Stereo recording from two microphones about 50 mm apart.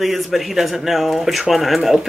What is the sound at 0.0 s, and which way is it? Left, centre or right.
Speech, centre.